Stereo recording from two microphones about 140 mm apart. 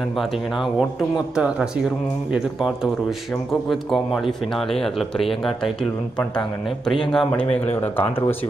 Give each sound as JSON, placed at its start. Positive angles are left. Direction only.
{"t": 1.3, "sound": "speech", "side_deg": -5}
{"t": 6.9, "sound": "speech", "side_deg": 5}
{"t": 7.4, "sound": "speech", "side_deg": 45}